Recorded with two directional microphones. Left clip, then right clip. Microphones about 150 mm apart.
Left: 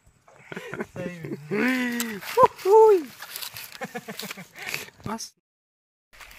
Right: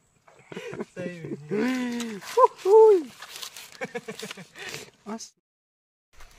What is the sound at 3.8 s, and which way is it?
Speech, 25° right (ahead or behind).